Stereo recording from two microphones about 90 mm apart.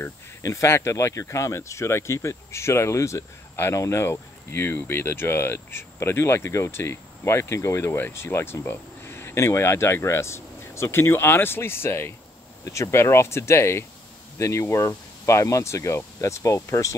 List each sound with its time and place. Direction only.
0.0 s speech: 35° left (ahead or behind)